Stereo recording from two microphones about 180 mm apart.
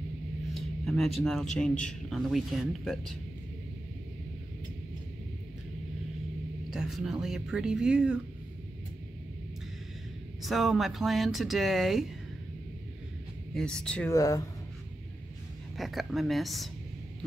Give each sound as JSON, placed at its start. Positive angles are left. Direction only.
{"t": 0.6, "sound": "speech", "side_deg": 0}
{"t": 6.7, "sound": "speech", "side_deg": 0}
{"t": 10.4, "sound": "speech", "side_deg": 0}
{"t": 13.6, "sound": "speech", "side_deg": 5}
{"t": 14.1, "sound": "speech", "side_deg": 20}
{"t": 15.8, "sound": "speech", "side_deg": 0}